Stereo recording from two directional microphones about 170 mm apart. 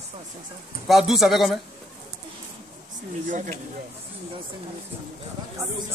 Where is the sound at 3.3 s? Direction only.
45° right (ahead or behind).